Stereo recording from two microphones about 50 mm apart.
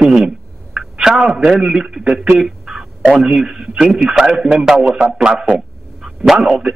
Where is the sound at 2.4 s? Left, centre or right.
Centre.